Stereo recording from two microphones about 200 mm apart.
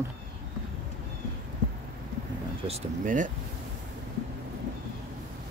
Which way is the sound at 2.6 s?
35° right (ahead or behind).